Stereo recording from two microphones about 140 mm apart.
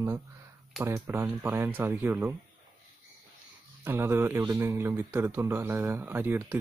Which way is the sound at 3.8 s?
15° right (ahead or behind).